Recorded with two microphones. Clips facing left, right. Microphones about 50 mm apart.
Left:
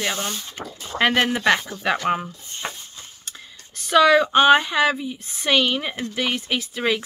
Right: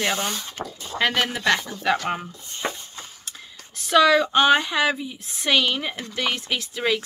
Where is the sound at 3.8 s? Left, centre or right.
Centre.